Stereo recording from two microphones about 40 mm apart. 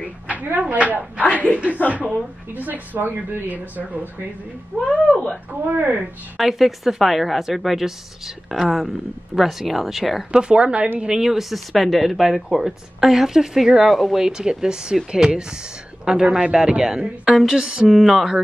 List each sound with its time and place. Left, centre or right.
0.6 s speech: right
1.2 s speech: left
2.5 s speech: right
3.0 s speech: right
4.8 s speech: left
5.5 s speech: right
6.3 s speech: centre
10.3 s speech: right
11.0 s speech: centre
11.2 s speech: centre
14.3 s speech: centre
16.9 s speech: centre
17.3 s speech: centre
17.6 s speech: centre